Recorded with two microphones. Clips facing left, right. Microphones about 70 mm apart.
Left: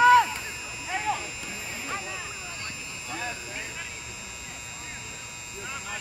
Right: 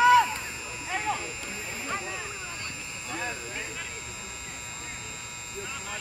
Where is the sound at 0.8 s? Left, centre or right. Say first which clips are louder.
Left 1 dB; right.